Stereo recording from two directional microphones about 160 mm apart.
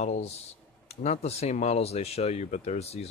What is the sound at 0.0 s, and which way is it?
Speech, 45° left (ahead or behind).